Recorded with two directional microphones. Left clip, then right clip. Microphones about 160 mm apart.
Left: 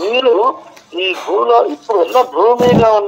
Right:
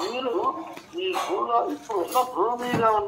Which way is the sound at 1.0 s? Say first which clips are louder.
Left 11 dB; 50° left (ahead or behind).